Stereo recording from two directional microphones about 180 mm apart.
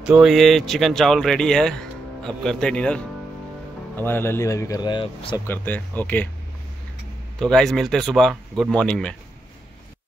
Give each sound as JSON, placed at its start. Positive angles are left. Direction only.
{"t": 0.0, "sound": "speech", "side_deg": -5}
{"t": 5.5, "sound": "speech", "side_deg": 10}
{"t": 7.3, "sound": "speech", "side_deg": 5}